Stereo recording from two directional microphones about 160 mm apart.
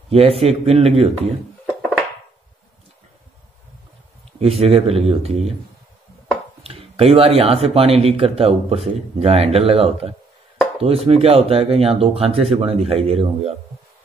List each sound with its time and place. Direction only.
0.1 s speech: 40° right (ahead or behind)
4.4 s speech: 40° right (ahead or behind)
6.6 s speech: 40° right (ahead or behind)